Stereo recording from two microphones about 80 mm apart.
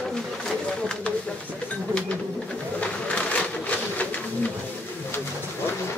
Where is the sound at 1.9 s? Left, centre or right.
Centre.